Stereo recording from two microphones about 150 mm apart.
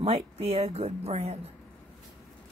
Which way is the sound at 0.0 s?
40° right (ahead or behind).